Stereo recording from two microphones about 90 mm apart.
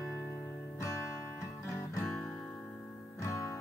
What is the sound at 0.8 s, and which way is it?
Music, 35° left (ahead or behind).